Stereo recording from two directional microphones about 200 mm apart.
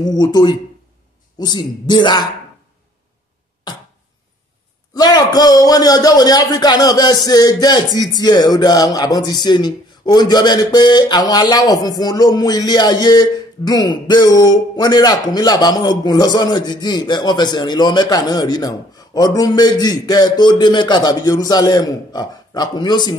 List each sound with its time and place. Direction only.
0.0 s a man's voice: 20° left (ahead or behind)
4.9 s a man's voice: 20° left (ahead or behind)